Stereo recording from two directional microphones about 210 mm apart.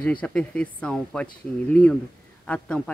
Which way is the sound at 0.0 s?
5° left (ahead or behind).